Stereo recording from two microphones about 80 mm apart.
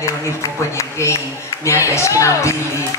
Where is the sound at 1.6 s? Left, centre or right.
Left.